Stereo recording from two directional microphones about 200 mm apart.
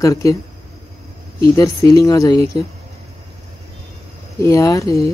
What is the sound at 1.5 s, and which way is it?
Speech, 15° left (ahead or behind).